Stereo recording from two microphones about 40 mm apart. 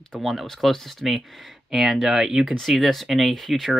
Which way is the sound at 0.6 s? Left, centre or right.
Centre.